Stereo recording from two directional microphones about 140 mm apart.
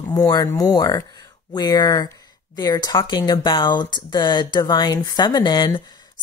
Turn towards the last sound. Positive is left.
turn(degrees=30)  # may be behind; listen again after turning